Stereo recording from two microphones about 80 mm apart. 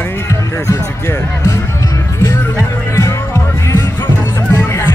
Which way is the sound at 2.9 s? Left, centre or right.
Left.